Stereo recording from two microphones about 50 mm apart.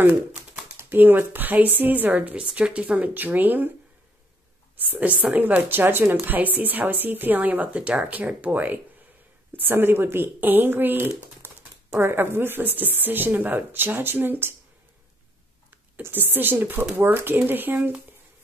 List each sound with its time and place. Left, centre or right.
0.7 s a woman's voice: right
2.3 s speech: right
3.2 s a woman's voice: right
4.9 s speech: right
5.7 s a woman's voice: right
16.0 s a woman's voice: right